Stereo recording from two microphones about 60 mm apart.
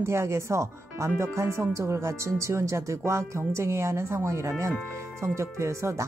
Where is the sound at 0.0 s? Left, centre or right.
Right.